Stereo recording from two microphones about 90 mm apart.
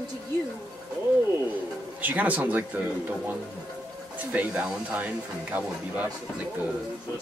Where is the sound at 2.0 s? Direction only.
20° right (ahead or behind).